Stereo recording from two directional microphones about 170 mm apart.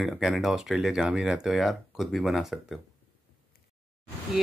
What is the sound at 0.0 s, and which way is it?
Speech, centre (ahead or behind).